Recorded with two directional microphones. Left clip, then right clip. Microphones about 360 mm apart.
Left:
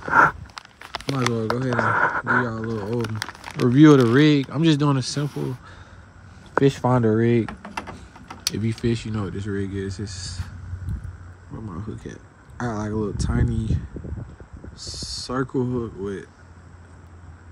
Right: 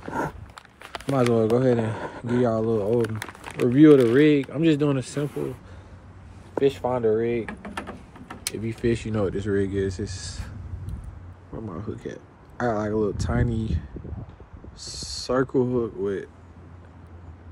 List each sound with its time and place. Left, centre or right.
0.6 s a sound: left
1.1 s speech: centre
1.7 s speech: centre
2.4 s speech: centre
3.0 s speech: centre
6.6 s speech: left; by 10.5 s centre
11.7 s speech: centre